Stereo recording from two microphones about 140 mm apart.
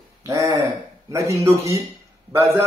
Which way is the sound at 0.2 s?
25° right (ahead or behind).